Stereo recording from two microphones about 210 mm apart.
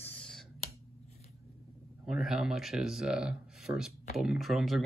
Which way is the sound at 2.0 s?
Centre (ahead or behind).